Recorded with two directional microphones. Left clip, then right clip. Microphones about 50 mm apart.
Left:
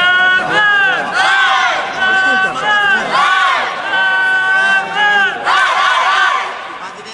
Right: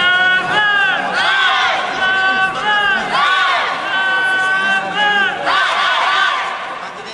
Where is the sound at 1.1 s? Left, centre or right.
Left.